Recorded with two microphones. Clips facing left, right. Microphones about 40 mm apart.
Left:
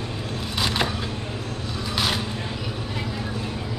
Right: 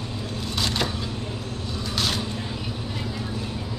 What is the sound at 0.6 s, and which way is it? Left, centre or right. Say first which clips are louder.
Vehicle: left 2 dB; centre.